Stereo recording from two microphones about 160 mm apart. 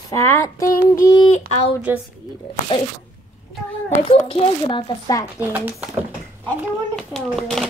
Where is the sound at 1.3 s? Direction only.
45° left (ahead or behind).